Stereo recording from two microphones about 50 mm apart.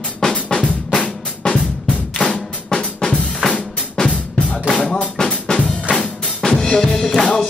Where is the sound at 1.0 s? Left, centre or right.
Centre.